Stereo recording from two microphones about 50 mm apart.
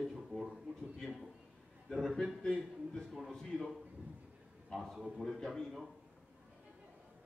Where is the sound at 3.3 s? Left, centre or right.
Centre.